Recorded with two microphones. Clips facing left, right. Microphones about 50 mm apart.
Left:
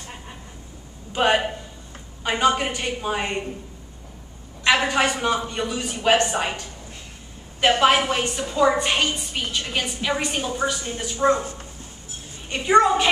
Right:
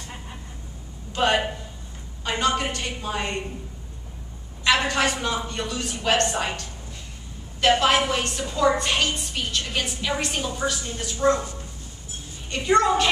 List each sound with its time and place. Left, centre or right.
1.1 s a woman's voice: centre
4.6 s a woman's voice: centre
7.8 s a woman's voice: centre
12.4 s a woman's voice: centre